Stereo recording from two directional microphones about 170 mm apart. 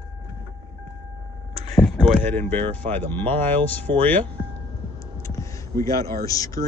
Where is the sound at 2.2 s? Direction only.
10° left (ahead or behind).